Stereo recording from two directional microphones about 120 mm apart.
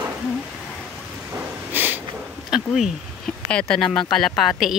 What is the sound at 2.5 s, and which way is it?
A woman's voice, 5° right (ahead or behind).